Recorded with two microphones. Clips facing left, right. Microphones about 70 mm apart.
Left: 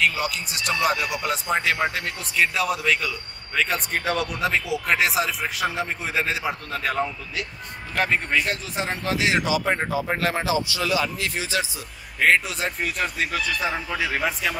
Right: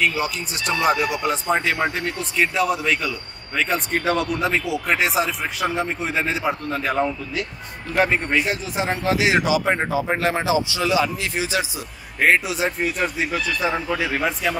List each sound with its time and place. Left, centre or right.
0.0 s a man's voice: centre